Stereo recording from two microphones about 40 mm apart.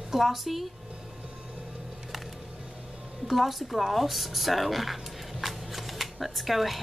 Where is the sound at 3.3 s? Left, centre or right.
Centre.